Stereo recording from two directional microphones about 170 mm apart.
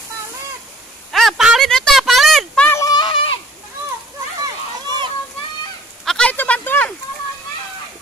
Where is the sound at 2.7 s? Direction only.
20° left (ahead or behind).